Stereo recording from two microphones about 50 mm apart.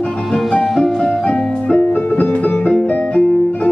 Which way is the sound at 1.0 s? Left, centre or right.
Left.